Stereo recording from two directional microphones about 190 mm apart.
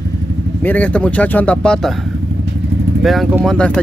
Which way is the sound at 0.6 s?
10° left (ahead or behind).